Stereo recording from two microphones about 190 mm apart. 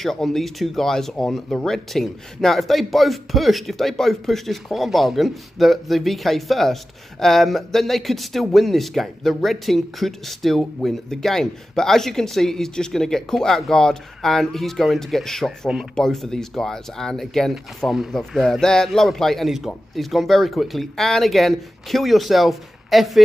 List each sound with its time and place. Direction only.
0.0 s speech: centre (ahead or behind)